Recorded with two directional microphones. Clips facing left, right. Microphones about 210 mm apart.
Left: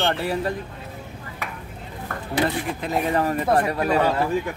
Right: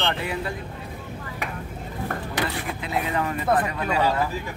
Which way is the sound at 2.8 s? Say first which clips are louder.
Left 3 dB; 40° left (ahead or behind).